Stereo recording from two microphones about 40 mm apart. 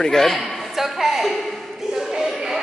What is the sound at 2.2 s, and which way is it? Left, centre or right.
Music, centre.